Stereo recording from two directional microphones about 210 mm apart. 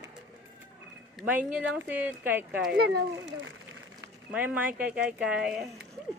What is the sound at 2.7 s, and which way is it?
Speech, 50° right (ahead or behind).